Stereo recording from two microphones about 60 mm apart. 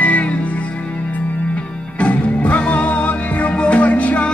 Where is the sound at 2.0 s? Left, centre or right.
Left.